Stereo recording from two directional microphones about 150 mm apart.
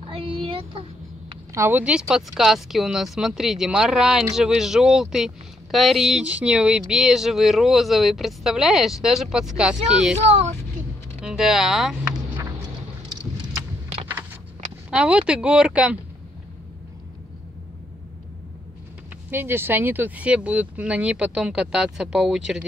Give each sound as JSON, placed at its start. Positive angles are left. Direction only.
{"t": 0.1, "sound": "a sound", "side_deg": -35}
{"t": 1.5, "sound": "speech", "side_deg": -15}
{"t": 10.2, "sound": "speech", "side_deg": -45}
{"t": 11.1, "sound": "speech", "side_deg": -5}
{"t": 14.9, "sound": "speech", "side_deg": -5}
{"t": 19.3, "sound": "speech", "side_deg": -15}